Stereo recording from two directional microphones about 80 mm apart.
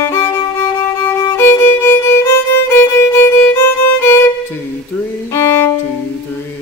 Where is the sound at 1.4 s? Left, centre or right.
Left.